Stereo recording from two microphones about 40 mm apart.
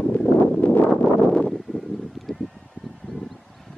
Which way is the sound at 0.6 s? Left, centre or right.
Left.